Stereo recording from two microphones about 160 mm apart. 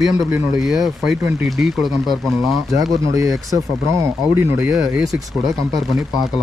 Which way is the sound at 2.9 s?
20° right (ahead or behind).